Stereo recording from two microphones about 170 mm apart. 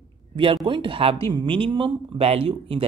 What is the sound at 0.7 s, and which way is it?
A woman's voice, 30° right (ahead or behind).